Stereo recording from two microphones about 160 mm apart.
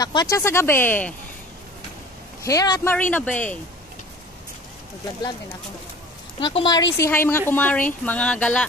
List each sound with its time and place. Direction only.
0.0 s speech: 25° left (ahead or behind)
2.4 s speech: 25° left (ahead or behind)
2.9 s speech: 10° left (ahead or behind)
6.4 s speech: 30° left (ahead or behind)
7.1 s speech: 15° left (ahead or behind)